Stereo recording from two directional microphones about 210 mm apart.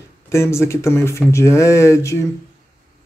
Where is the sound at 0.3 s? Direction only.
15° left (ahead or behind).